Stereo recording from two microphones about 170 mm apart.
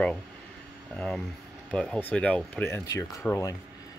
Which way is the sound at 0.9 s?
5° left (ahead or behind).